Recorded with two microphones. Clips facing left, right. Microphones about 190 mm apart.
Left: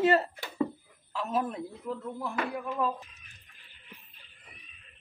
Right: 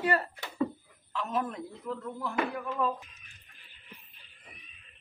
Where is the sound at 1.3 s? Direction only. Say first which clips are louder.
Left 2 dB; 10° left (ahead or behind).